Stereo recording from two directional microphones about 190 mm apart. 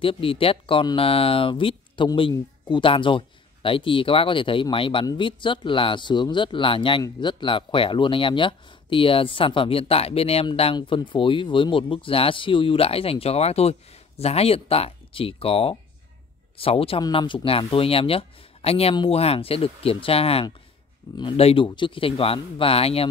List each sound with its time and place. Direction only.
0.0 s speech: 30° left (ahead or behind)